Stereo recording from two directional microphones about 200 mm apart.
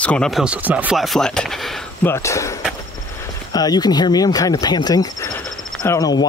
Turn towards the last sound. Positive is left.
turn(degrees=20)  # may be behind; listen again after turning